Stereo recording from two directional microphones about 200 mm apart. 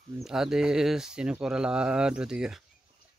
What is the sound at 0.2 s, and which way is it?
Speech, centre (ahead or behind).